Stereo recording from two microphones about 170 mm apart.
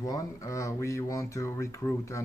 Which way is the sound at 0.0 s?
20° left (ahead or behind).